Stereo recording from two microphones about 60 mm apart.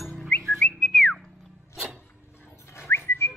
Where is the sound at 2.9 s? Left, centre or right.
Left.